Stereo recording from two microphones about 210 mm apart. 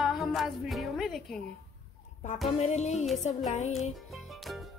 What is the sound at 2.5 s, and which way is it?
Music, 30° left (ahead or behind).